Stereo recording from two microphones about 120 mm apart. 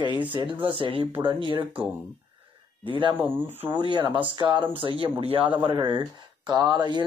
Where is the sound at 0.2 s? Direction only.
45° right (ahead or behind).